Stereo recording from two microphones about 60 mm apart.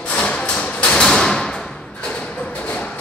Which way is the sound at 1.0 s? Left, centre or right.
Centre.